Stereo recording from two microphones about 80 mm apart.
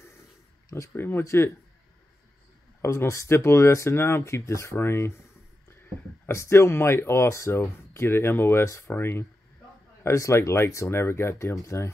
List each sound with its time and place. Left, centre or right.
0.9 s speech: left
2.8 s speech: left